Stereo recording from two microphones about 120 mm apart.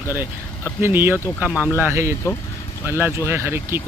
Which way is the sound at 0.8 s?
15° right (ahead or behind).